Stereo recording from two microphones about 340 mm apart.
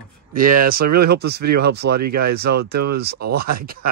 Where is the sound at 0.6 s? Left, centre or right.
Right.